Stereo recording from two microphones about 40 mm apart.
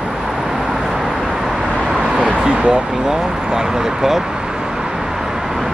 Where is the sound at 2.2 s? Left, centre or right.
Right.